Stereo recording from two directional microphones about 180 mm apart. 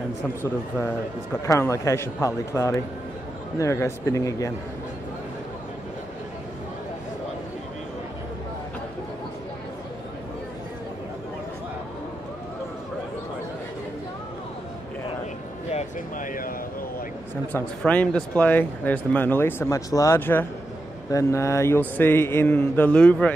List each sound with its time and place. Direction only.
0.4 s speech: 10° left (ahead or behind)
15.7 s a sound: 45° left (ahead or behind)
17.5 s speech: 10° left (ahead or behind)